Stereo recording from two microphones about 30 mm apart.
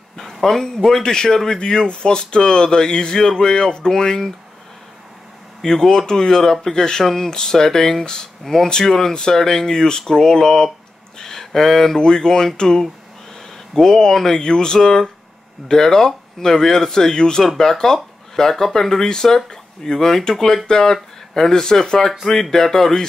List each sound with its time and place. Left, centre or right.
0.2 s a sound: centre
0.8 s speech: centre
5.6 s speech: centre
13.7 s speech: centre